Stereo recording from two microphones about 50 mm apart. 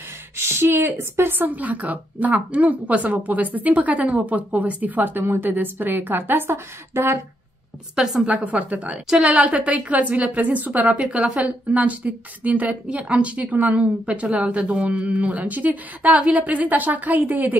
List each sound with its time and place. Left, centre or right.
0.4 s a woman's voice: right
1.5 s a woman's voice: right
8.3 s a woman's voice: right